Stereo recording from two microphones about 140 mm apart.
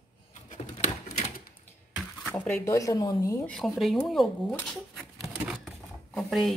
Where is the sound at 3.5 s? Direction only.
Centre (ahead or behind).